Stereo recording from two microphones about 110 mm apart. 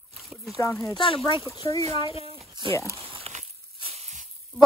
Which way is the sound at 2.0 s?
60° left (ahead or behind).